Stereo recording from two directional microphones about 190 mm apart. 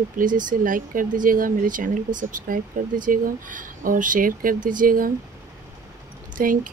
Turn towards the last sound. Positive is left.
turn(degrees=-45)  # may be behind; listen again after turning